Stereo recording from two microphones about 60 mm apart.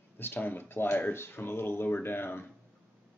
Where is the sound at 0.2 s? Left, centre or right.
Left.